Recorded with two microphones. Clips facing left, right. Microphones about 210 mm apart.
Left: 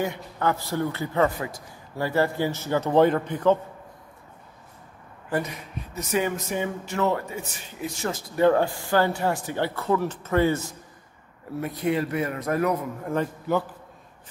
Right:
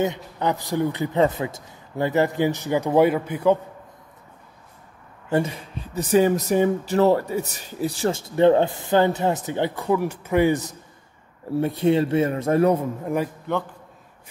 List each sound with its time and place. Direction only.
0.0 s a man's voice: 20° right (ahead or behind)
5.3 s speech: 30° right (ahead or behind)
11.5 s speech: 30° right (ahead or behind)
13.5 s a man's voice: 5° left (ahead or behind)